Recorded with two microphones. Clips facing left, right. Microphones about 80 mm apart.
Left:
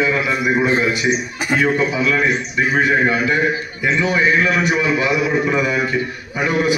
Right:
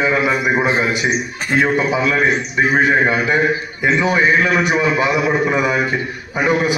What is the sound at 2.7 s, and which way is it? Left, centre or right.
A man's voice, right.